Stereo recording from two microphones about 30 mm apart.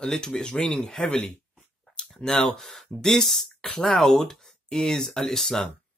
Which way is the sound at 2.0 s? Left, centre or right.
Left.